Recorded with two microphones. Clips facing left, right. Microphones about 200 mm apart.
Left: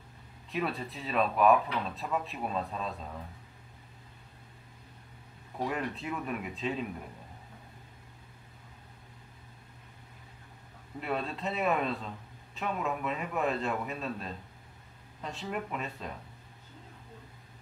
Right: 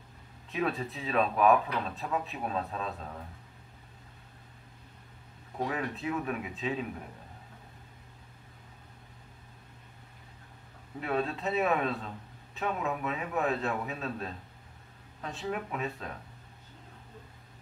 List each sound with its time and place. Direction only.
0.5 s speech: centre (ahead or behind)
5.7 s speech: centre (ahead or behind)
11.0 s speech: centre (ahead or behind)